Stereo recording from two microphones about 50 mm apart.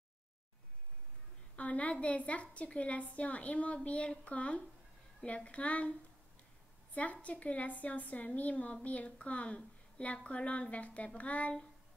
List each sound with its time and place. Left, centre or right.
1.6 s a woman's voice: left